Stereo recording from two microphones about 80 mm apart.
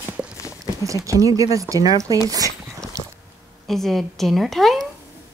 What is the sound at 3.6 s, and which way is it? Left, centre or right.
A woman's voice, centre.